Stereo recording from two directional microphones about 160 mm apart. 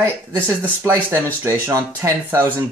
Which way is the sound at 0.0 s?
15° right (ahead or behind).